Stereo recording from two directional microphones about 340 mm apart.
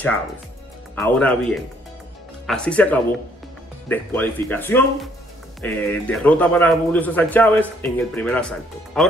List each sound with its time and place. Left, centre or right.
0.9 s a man's voice: centre